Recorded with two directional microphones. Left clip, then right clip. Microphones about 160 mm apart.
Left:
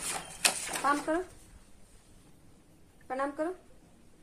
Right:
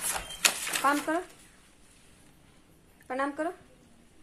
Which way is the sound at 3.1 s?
55° right (ahead or behind).